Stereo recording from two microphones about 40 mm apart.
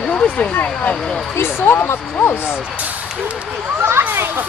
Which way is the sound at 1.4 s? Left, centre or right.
Left.